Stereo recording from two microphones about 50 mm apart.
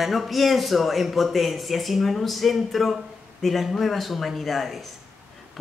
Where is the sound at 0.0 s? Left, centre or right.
Centre.